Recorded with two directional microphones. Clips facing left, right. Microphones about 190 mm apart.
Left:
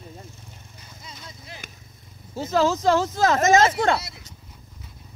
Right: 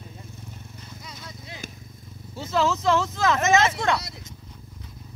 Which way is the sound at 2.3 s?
40° left (ahead or behind).